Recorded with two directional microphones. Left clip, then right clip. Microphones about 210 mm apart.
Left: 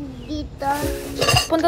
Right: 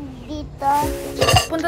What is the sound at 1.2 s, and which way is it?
Music, 50° right (ahead or behind).